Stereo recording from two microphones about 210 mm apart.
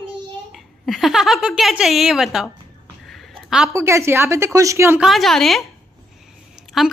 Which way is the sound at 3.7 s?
15° right (ahead or behind).